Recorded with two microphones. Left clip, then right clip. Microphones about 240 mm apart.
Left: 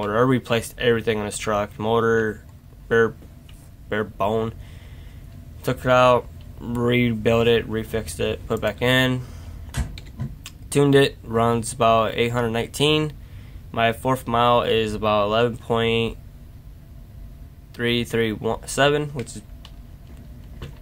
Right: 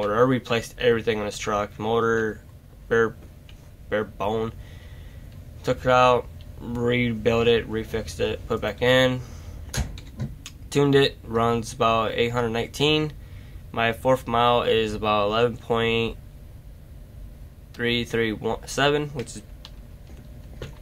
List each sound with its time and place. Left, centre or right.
0.0 s speech: centre
3.9 s speech: centre
5.6 s speech: centre
10.4 s speech: centre
17.7 s speech: centre